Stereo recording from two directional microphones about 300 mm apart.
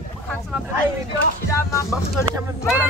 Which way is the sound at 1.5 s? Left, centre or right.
Centre.